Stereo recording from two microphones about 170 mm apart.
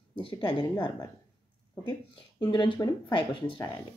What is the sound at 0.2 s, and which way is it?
Speech, 30° left (ahead or behind).